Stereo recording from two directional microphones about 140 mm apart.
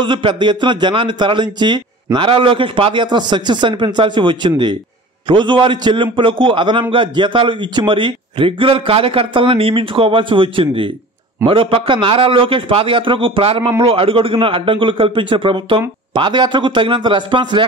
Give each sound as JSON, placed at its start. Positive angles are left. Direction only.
{"t": 0.0, "sound": "a man's voice", "side_deg": -35}